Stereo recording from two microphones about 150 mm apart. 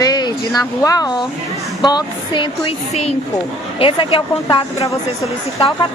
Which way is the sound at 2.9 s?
45° left (ahead or behind).